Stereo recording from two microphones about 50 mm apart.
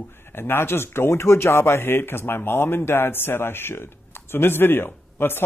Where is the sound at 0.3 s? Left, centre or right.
Left.